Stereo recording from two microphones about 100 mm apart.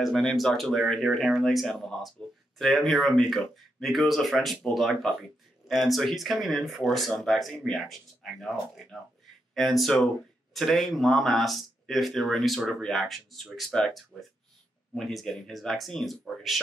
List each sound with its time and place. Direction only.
0.0 s speech: centre (ahead or behind)